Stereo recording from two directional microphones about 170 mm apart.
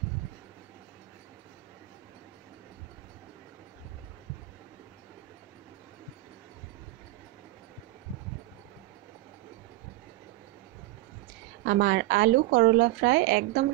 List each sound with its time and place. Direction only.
11.6 s speech: 90° right